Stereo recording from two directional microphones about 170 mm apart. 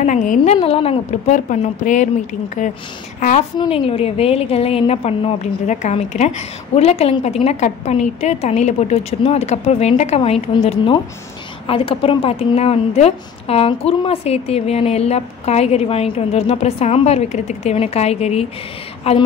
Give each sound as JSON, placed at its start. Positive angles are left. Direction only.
{"t": 0.0, "sound": "a woman's voice", "side_deg": 45}
{"t": 0.6, "sound": "a woman's voice", "side_deg": 35}
{"t": 3.7, "sound": "a woman's voice", "side_deg": 35}